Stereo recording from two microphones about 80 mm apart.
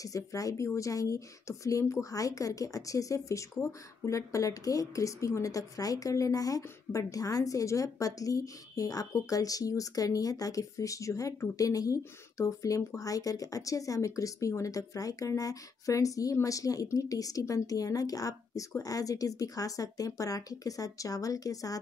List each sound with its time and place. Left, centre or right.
0.0 s a woman's voice: left